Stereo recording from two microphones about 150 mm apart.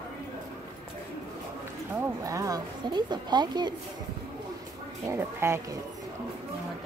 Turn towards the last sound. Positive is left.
turn(degrees=-15)  # may be behind; listen again after turning